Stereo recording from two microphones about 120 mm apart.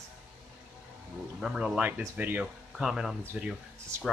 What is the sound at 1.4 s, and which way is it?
Speech, 5° right (ahead or behind).